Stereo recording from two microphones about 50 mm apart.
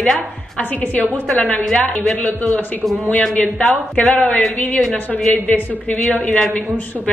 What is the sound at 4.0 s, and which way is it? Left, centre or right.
Speech, left.